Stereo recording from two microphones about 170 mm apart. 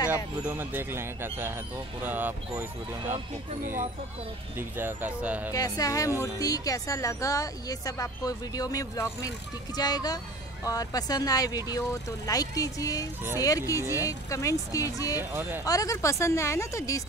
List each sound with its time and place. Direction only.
0.1 s speech: 15° right (ahead or behind)
3.6 s speech: 50° right (ahead or behind)
4.6 s speech: 10° right (ahead or behind)
5.5 s speech: 20° left (ahead or behind)